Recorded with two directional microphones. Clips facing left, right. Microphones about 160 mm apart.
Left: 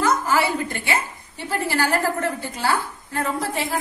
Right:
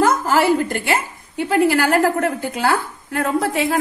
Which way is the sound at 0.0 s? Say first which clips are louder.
Right 4 dB; 45° right (ahead or behind).